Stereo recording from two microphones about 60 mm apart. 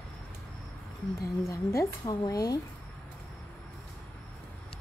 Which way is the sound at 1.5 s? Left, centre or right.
Left.